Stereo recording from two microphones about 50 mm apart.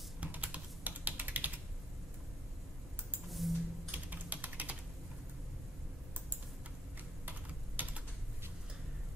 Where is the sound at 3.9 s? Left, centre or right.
Right.